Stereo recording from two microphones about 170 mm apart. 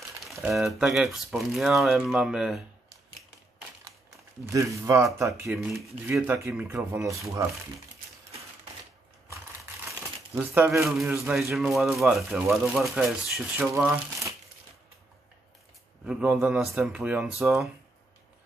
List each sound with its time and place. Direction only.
0.3 s speech: centre (ahead or behind)
4.5 s speech: 20° right (ahead or behind)
10.3 s speech: 10° right (ahead or behind)
10.8 s speech: centre (ahead or behind)
11.1 s speech: 15° right (ahead or behind)
11.5 s speech: centre (ahead or behind)
16.1 s speech: 5° right (ahead or behind)